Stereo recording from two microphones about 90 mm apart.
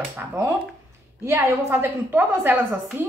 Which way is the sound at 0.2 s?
20° right (ahead or behind).